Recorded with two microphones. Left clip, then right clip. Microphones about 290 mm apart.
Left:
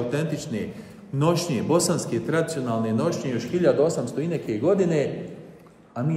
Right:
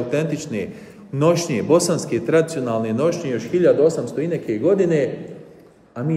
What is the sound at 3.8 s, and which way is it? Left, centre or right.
Speech, left.